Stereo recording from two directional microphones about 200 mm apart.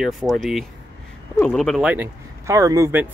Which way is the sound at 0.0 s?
Centre (ahead or behind).